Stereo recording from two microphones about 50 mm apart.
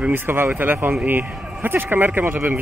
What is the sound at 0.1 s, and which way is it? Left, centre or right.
A man's voice, right.